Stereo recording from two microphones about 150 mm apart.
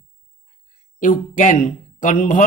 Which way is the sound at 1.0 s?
60° left (ahead or behind).